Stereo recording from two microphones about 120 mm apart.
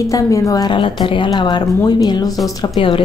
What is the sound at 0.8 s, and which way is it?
Speech, 45° left (ahead or behind).